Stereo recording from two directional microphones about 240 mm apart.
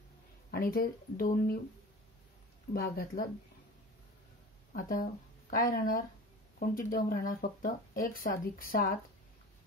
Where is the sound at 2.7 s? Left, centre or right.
Left.